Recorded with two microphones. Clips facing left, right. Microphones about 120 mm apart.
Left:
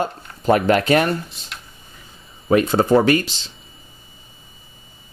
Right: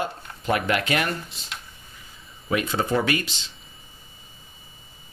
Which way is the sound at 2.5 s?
40° left (ahead or behind).